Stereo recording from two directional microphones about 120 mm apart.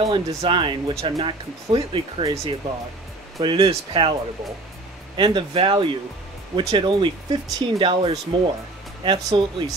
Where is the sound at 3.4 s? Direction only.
45° right (ahead or behind).